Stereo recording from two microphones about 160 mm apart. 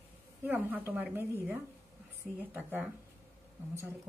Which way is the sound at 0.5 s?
10° right (ahead or behind).